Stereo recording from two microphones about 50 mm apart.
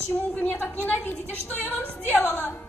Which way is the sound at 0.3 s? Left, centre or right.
Left.